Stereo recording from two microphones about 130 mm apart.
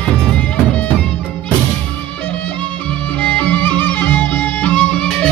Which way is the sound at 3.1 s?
10° left (ahead or behind).